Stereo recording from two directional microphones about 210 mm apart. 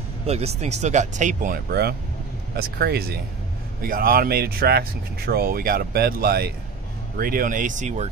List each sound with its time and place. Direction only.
0.3 s speech: 30° right (ahead or behind)